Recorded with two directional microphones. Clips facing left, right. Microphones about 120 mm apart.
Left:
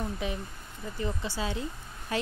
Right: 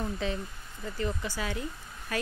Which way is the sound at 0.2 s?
15° left (ahead or behind).